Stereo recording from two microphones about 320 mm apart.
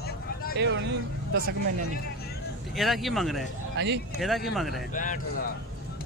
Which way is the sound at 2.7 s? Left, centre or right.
Centre.